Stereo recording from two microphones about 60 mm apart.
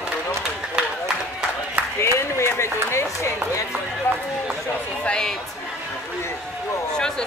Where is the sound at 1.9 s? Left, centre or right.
Left.